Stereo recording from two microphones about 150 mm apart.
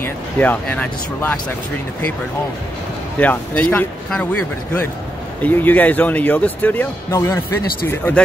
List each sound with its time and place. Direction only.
0.0 s speech: 10° left (ahead or behind)
3.2 s speech: 10° left (ahead or behind)